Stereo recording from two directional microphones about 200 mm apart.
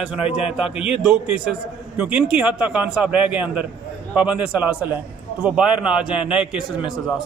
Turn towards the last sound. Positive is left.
turn(degrees=0)  # may be behind; listen again after turning